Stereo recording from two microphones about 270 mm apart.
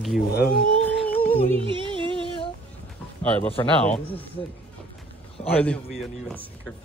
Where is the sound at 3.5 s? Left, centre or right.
Left.